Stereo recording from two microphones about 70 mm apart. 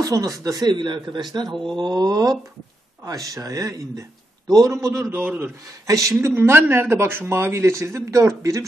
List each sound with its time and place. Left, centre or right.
0.0 s speech: right
1.5 s speech: centre
1.8 s mantra: right
3.1 s a man's voice: right
5.1 s speech: right
5.9 s speech: right
6.3 s speech: right